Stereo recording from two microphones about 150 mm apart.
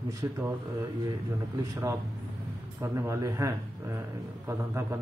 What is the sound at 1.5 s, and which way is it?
A man's voice, 20° right (ahead or behind).